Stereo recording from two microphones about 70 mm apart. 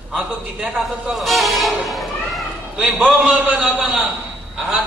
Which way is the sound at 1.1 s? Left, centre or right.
Centre.